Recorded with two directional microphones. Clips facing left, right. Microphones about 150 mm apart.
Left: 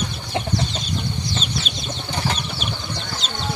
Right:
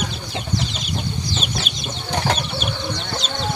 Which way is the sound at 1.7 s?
60° right (ahead or behind).